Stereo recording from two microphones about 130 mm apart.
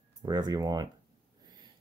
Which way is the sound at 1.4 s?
30° right (ahead or behind).